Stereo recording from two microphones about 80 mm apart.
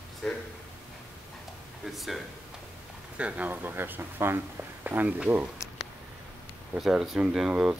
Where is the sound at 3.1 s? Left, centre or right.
Centre.